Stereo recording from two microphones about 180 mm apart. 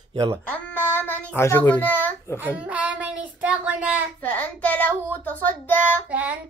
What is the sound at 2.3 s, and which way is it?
Child singing, 10° right (ahead or behind).